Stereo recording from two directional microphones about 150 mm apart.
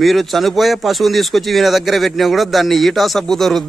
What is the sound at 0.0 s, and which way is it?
Speech, centre (ahead or behind).